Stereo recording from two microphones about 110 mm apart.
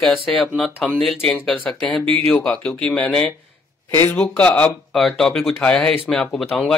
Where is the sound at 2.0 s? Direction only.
65° right (ahead or behind).